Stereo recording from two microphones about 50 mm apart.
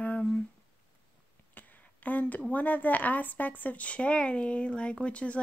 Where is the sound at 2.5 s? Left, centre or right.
Left.